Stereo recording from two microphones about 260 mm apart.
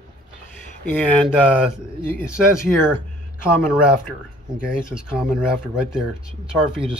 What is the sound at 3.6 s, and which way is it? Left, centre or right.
Speech, centre.